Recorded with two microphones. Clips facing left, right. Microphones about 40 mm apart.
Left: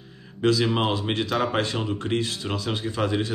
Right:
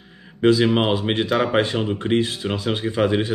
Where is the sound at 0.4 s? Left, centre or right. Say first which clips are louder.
Right 5 dB; centre.